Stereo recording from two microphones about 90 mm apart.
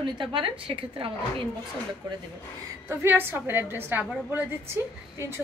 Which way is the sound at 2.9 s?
25° right (ahead or behind).